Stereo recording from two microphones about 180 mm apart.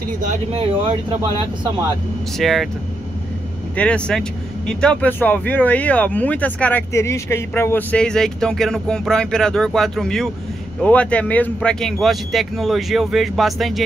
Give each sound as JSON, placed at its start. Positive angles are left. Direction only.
{"t": 0.2, "sound": "speech", "side_deg": -45}
{"t": 2.3, "sound": "speech", "side_deg": 0}
{"t": 3.7, "sound": "speech", "side_deg": 5}